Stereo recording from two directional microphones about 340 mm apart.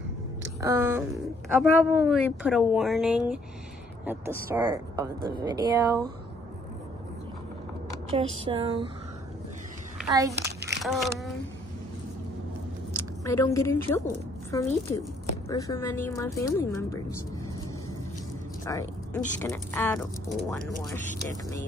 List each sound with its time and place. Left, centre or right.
0.6 s speech: centre
8.1 s speech: centre
9.9 s a child's voice: centre
10.4 s a sound: right
10.8 s speech: centre
12.9 s a woman's voice: centre
18.7 s speech: centre